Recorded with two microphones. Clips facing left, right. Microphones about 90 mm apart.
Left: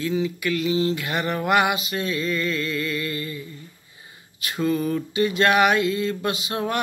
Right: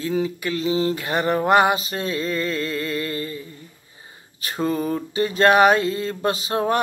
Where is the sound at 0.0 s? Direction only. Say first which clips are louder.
Right 1 dB; 35° right (ahead or behind).